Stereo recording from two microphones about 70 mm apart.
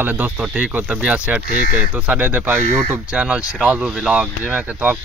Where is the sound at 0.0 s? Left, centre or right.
Right.